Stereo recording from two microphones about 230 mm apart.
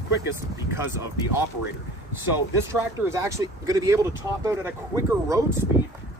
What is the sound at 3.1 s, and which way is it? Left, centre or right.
Speech, centre.